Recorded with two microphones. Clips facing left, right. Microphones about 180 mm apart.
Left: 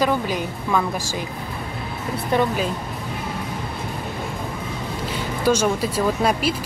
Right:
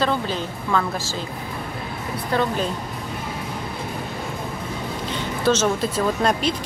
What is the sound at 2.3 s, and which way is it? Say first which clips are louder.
Speech: left 2 dB; 15° left (ahead or behind).